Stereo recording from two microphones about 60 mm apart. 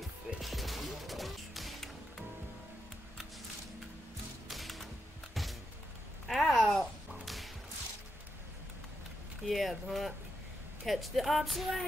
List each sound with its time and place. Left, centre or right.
0.4 s music: centre
4.5 s music: centre
6.2 s a sound: centre
9.4 s speech: centre